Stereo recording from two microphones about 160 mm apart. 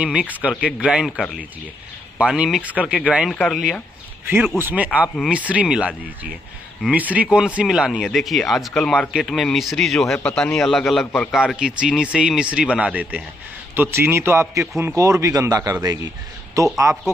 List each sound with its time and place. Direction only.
0.0 s speech: 5° right (ahead or behind)
2.1 s speech: 5° right (ahead or behind)
4.6 s speech: 15° right (ahead or behind)